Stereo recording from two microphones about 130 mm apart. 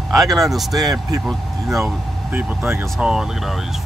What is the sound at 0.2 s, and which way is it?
Speech, centre (ahead or behind).